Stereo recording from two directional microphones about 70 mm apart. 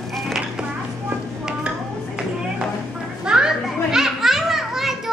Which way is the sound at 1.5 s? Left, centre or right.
Centre.